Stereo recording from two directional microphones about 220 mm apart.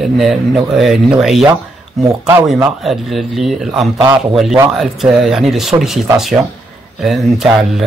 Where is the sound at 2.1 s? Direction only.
15° right (ahead or behind).